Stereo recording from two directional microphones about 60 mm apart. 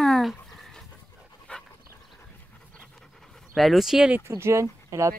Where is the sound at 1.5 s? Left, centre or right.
Left.